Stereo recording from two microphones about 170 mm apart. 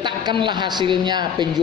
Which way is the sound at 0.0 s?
25° right (ahead or behind).